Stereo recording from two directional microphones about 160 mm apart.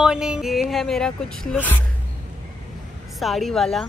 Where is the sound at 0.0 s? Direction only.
5° right (ahead or behind).